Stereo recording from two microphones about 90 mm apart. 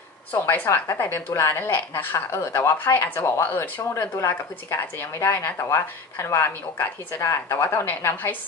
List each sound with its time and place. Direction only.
0.3 s a woman's voice: 20° left (ahead or behind)